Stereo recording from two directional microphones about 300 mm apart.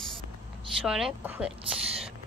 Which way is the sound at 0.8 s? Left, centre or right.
Centre.